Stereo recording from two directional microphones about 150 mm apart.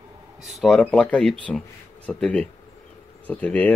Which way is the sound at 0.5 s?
Centre (ahead or behind).